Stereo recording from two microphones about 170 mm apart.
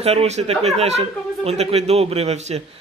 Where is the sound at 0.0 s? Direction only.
35° right (ahead or behind).